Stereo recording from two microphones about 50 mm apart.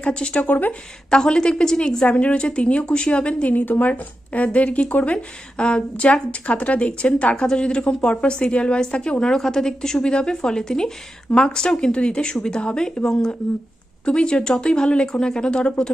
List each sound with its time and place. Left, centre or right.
0.0 s speech: left
0.4 s speech: left
1.1 s a woman's voice: centre
2.0 s speech: left
3.5 s a woman's voice: left; by 15.7 s centre